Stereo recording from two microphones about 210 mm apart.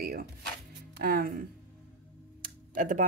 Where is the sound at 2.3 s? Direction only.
40° right (ahead or behind).